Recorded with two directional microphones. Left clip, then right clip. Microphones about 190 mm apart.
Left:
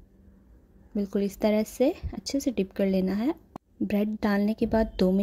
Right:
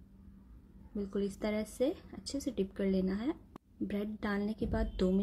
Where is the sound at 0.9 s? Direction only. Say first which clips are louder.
Left 8 dB; 35° left (ahead or behind).